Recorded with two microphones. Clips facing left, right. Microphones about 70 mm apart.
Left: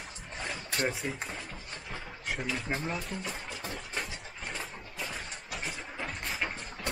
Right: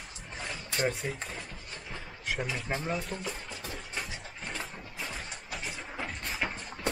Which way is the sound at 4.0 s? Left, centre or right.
Centre.